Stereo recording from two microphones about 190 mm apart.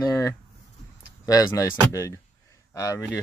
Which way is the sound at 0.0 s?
20° left (ahead or behind).